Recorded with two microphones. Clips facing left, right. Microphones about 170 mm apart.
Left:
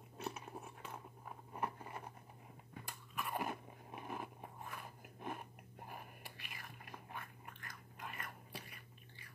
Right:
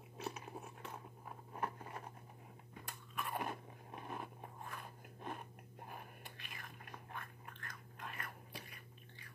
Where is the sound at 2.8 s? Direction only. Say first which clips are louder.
Even; centre (ahead or behind).